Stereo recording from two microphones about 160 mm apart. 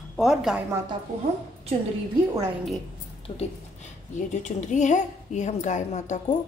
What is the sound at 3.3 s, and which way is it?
Speech, 35° left (ahead or behind).